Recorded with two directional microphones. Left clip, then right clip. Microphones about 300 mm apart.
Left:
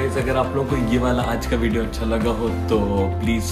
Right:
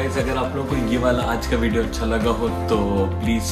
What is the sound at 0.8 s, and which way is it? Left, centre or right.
Speech, centre.